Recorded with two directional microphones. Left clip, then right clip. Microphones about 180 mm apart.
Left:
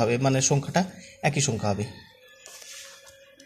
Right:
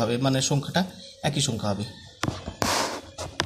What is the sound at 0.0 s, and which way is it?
A man's voice, 30° left (ahead or behind).